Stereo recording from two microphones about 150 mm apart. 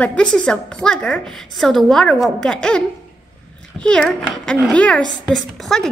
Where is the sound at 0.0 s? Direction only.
10° left (ahead or behind).